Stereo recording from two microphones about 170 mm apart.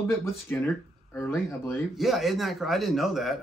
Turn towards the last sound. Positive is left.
turn(degrees=0)  # may be behind; listen again after turning